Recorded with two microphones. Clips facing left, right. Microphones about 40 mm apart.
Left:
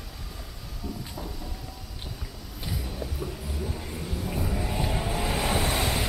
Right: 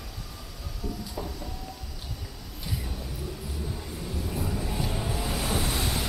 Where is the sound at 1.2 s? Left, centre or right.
Centre.